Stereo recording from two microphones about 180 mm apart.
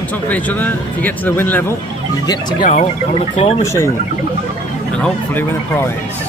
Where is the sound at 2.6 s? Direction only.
40° left (ahead or behind).